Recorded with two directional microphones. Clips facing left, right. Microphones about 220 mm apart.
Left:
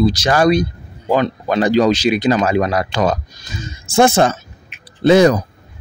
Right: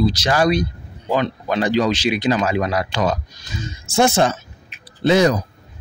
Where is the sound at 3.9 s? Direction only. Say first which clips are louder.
Left 4 dB; 55° left (ahead or behind).